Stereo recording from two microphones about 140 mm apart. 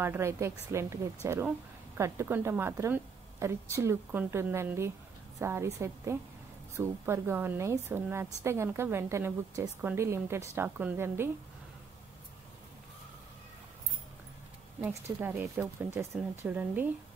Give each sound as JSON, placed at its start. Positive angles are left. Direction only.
{"t": 0.0, "sound": "a woman's voice", "side_deg": -20}
{"t": 15.0, "sound": "a woman's voice", "side_deg": -15}